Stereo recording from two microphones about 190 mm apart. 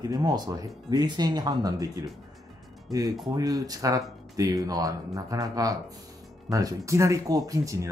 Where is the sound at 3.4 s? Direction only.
20° right (ahead or behind).